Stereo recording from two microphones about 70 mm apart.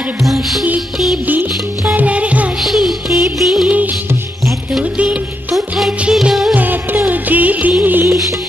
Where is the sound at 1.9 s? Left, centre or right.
Centre.